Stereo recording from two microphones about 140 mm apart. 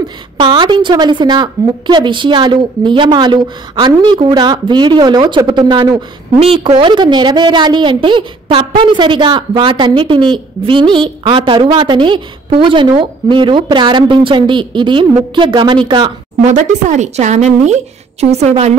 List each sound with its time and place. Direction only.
0.4 s a woman's voice: 35° right (ahead or behind)
16.4 s a woman's voice: 60° right (ahead or behind)